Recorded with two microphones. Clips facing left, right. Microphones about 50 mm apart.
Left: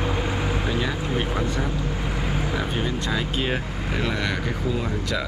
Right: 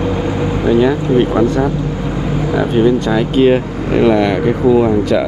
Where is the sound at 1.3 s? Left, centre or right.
Right.